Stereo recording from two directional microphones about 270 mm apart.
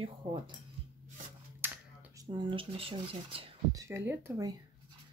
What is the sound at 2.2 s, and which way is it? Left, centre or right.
Speech, centre.